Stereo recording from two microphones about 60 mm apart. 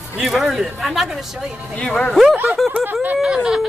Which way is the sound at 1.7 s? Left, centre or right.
Centre.